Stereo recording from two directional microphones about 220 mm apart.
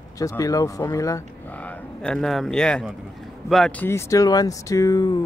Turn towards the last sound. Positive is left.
turn(degrees=15)  # may be behind; listen again after turning